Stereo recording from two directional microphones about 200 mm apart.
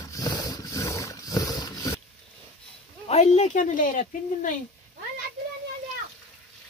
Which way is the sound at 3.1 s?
35° left (ahead or behind).